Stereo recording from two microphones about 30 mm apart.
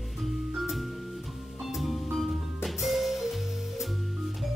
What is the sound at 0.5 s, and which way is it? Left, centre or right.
Music, centre.